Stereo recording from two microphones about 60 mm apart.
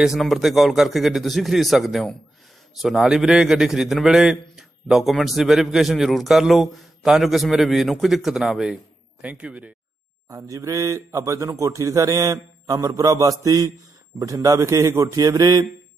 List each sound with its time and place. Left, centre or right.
0.2 s a man's voice: centre
9.2 s speech: right
10.2 s speech: right